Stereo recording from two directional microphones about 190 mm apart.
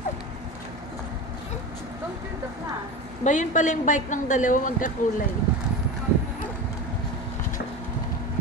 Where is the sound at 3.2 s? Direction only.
40° left (ahead or behind).